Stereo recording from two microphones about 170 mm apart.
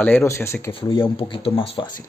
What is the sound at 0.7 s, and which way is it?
Speech, 30° left (ahead or behind).